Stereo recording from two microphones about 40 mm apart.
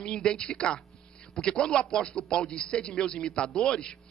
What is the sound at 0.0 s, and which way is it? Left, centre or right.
A man's voice, left.